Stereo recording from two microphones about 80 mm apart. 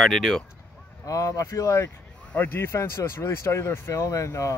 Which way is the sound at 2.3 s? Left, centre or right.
Left.